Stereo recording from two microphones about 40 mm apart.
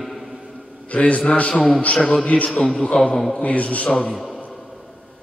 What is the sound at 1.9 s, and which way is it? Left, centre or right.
Speech, centre.